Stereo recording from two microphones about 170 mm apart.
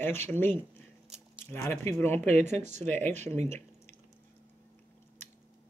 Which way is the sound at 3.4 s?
15° left (ahead or behind).